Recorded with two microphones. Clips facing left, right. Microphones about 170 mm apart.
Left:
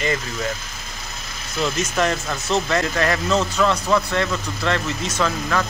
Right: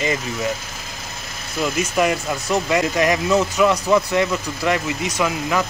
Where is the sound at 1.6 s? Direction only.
10° right (ahead or behind).